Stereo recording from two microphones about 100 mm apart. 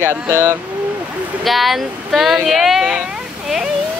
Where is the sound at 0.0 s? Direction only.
25° right (ahead or behind).